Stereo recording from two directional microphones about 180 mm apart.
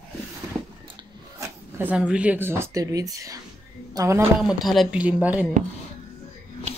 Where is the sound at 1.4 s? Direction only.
10° right (ahead or behind).